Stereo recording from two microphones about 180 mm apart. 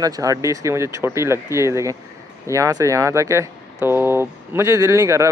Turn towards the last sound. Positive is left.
turn(degrees=-15)  # may be behind; listen again after turning